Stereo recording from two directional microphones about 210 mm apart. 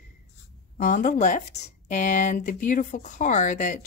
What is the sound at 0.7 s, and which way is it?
Speech, 35° left (ahead or behind).